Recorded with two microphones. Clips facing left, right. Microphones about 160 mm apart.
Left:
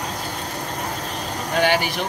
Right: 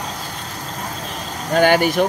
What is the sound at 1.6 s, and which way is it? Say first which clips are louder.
Speech: right 6 dB; 45° right (ahead or behind).